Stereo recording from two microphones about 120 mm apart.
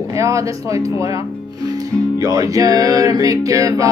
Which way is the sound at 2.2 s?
30° right (ahead or behind).